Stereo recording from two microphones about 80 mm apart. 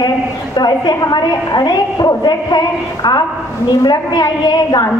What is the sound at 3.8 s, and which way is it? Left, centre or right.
A man's voice, left.